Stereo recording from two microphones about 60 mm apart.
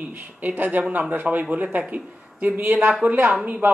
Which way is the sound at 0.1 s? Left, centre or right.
Right.